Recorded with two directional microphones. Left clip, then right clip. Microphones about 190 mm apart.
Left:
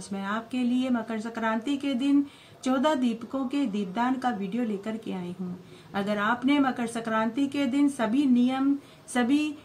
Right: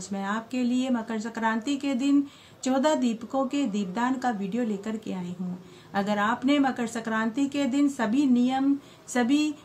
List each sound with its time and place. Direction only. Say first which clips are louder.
0.1 s speech: right 1 dB; 30° right (ahead or behind)
5.9 s speech: right 1 dB; 30° right (ahead or behind)